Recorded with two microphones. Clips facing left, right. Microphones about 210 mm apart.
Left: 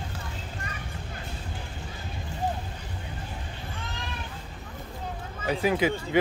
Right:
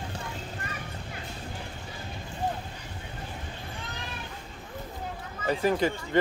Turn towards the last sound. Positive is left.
turn(degrees=5)  # may be behind; listen again after turning